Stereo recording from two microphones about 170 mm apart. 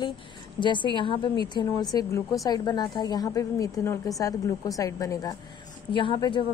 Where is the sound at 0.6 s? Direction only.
30° left (ahead or behind).